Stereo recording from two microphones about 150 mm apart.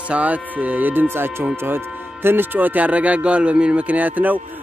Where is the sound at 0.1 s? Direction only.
10° right (ahead or behind).